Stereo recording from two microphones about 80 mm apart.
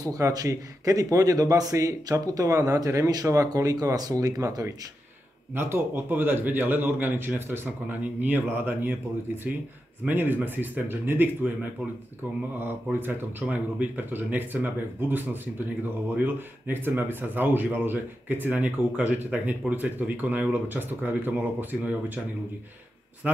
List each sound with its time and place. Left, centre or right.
0.0 s a man's voice: right
5.5 s a man's voice: right
10.0 s a man's voice: right
12.5 s a man's voice: right
23.2 s a man's voice: centre